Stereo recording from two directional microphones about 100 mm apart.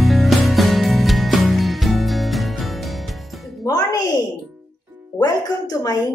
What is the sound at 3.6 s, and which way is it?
Music, 40° left (ahead or behind).